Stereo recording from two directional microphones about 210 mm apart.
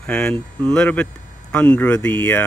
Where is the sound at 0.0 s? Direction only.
5° left (ahead or behind).